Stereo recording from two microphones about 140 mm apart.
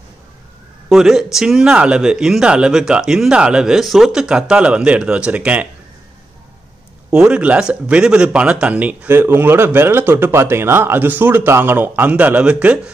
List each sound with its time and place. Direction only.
0.8 s speech: 5° right (ahead or behind)
7.1 s speech: 5° right (ahead or behind)